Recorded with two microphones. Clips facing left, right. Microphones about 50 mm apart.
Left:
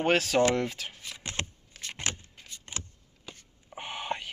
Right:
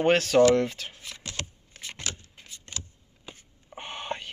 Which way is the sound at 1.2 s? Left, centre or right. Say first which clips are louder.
Left 2 dB; left.